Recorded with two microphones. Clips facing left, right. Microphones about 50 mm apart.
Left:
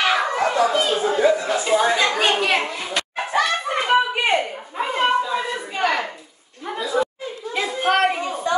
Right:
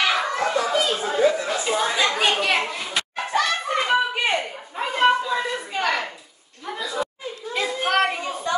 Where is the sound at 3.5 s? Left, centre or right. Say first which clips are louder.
Left 1 dB; centre.